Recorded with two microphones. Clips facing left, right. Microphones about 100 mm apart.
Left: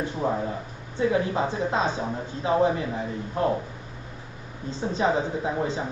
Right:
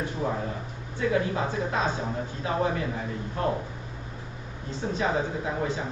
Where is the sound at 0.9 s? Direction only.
25° left (ahead or behind).